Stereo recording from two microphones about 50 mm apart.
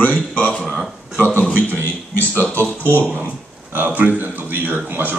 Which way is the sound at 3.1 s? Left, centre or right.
Right.